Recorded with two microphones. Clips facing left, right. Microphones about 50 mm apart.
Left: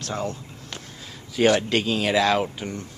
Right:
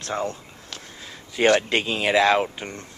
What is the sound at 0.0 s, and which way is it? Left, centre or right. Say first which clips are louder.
A man's voice: right 2 dB; centre.